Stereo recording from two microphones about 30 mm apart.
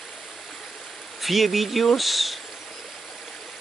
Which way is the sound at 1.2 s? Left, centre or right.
Centre.